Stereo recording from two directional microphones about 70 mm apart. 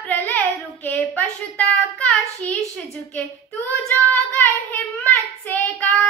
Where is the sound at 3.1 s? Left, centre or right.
Left.